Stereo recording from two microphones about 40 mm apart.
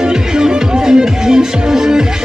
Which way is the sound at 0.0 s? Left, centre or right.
Centre.